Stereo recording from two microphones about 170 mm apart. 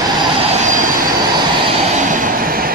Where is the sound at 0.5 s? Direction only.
50° right (ahead or behind).